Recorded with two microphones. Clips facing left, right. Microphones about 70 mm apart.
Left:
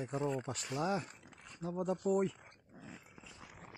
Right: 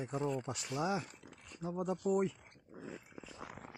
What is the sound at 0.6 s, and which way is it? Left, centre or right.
Speech, centre.